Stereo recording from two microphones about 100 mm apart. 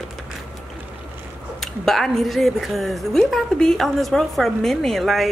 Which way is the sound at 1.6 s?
5° left (ahead or behind).